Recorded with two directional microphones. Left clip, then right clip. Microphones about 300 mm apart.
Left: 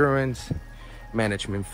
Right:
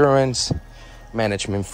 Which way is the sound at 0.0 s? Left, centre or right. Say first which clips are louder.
Right 7 dB; centre.